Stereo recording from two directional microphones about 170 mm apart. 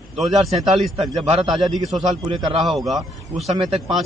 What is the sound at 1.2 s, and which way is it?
Speech, 35° right (ahead or behind).